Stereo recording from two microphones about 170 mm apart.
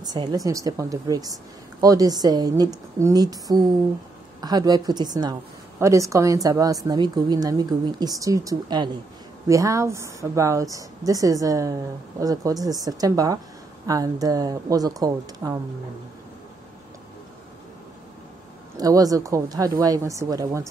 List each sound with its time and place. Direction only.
0.0 s a woman's voice: 25° right (ahead or behind)
18.8 s a woman's voice: 20° right (ahead or behind)